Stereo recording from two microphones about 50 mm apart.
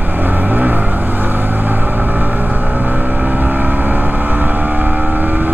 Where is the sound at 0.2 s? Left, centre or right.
Right.